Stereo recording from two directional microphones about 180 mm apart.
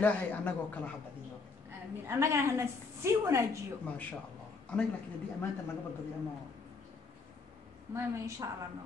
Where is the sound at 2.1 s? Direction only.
15° right (ahead or behind).